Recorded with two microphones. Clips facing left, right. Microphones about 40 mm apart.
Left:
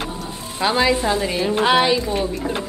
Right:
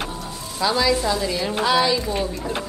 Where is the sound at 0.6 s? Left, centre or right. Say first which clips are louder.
Left 2 dB; left.